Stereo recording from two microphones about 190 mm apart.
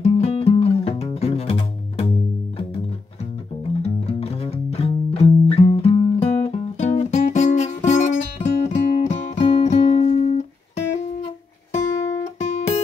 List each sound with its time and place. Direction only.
0.0 s music: 35° left (ahead or behind)
3.8 s music: 30° left (ahead or behind)
11.7 s music: 40° left (ahead or behind)